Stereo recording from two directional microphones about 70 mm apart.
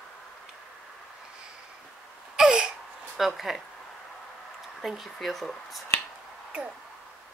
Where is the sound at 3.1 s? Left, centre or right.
Centre.